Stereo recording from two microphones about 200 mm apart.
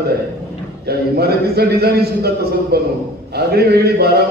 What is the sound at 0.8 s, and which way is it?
A man's voice, 50° right (ahead or behind).